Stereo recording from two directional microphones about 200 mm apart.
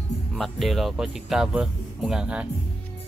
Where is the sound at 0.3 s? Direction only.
Centre (ahead or behind).